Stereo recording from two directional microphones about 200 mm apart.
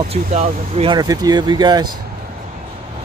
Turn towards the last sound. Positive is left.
turn(degrees=-20)  # may be behind; listen again after turning